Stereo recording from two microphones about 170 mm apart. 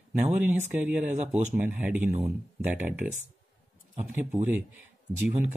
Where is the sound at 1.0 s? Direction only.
45° right (ahead or behind).